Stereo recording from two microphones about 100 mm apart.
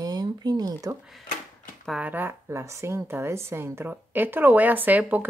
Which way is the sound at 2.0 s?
20° right (ahead or behind).